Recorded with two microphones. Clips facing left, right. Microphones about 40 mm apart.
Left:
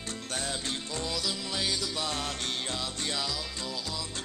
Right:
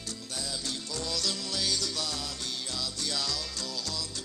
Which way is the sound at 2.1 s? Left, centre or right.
Left.